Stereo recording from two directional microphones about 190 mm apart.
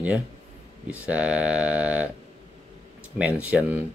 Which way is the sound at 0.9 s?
5° right (ahead or behind).